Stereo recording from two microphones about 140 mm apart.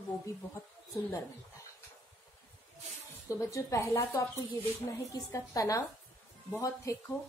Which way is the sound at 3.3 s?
20° left (ahead or behind).